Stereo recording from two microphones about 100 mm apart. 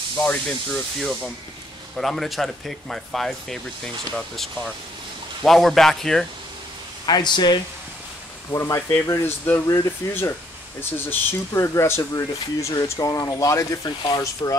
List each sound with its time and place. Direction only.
0.2 s speech: 10° left (ahead or behind)
5.4 s speech: 5° left (ahead or behind)
7.1 s speech: 45° left (ahead or behind)
8.5 s speech: 30° left (ahead or behind)